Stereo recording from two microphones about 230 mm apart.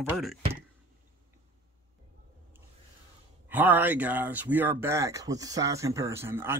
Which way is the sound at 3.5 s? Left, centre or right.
Centre.